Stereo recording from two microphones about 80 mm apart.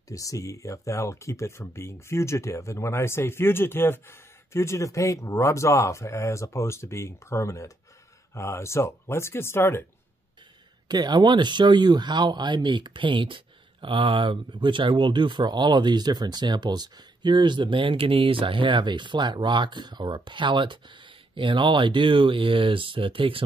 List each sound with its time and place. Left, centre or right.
0.1 s speech: left
10.9 s speech: right